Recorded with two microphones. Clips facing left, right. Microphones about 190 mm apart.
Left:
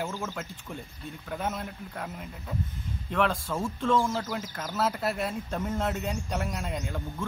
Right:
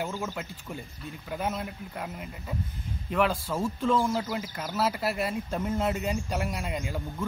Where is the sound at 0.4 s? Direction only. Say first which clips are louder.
Right 1 dB; centre (ahead or behind).